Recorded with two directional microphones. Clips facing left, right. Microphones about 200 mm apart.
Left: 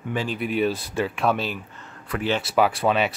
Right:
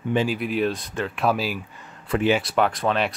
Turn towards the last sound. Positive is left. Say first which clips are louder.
# left 1 dB
turn(degrees=5)  # may be behind; listen again after turning